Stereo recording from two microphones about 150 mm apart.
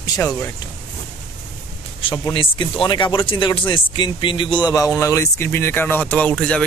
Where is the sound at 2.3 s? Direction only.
35° left (ahead or behind).